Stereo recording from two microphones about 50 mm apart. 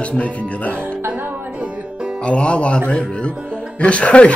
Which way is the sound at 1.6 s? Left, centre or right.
Centre.